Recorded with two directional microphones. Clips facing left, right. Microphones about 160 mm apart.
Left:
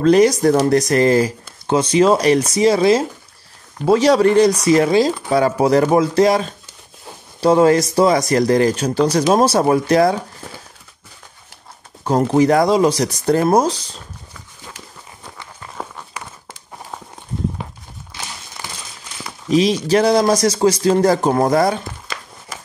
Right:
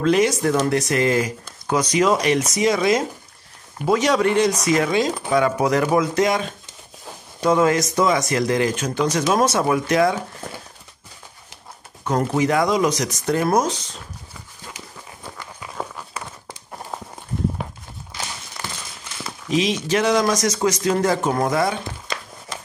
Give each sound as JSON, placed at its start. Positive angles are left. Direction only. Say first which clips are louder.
{"t": 0.0, "sound": "speech", "louder": "left 6 dB", "side_deg": 40}
{"t": 12.0, "sound": "speech", "louder": "left 6 dB", "side_deg": 30}
{"t": 19.5, "sound": "speech", "louder": "left 6 dB", "side_deg": 35}